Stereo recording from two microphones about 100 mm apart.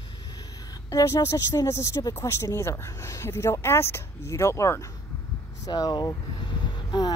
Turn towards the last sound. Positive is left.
turn(degrees=50)  # may be behind; listen again after turning